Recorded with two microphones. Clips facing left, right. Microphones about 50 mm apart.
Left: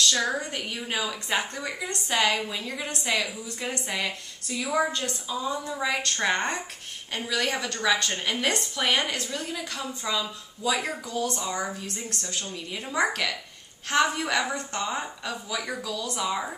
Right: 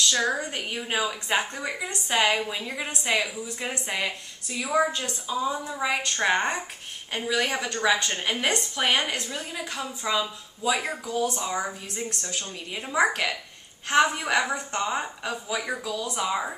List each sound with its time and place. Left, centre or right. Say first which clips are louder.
0.1 s a woman's voice: right 1 dB; centre
0.7 s a woman's voice: right 4 dB; centre
4.6 s a woman's voice: right 2 dB; centre